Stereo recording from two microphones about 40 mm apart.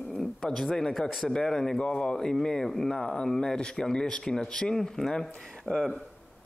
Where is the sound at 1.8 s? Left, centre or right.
Left.